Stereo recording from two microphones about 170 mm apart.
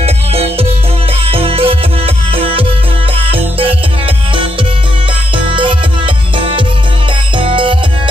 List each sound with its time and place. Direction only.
0.0 s music: 35° right (ahead or behind)
5.5 s music: 30° right (ahead or behind)